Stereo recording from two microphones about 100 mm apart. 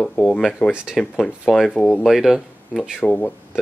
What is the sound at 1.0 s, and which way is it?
Speech, centre (ahead or behind).